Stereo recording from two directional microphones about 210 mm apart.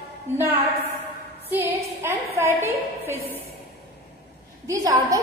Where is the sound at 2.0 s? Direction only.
10° right (ahead or behind).